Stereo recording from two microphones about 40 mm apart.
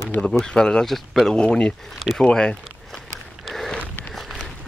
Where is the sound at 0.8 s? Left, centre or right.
Centre.